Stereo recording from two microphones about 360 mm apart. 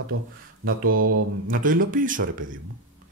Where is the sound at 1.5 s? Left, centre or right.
Right.